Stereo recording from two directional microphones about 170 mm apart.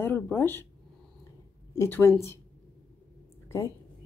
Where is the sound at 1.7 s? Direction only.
15° left (ahead or behind).